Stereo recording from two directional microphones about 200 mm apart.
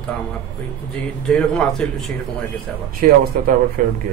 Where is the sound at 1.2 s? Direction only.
5° left (ahead or behind).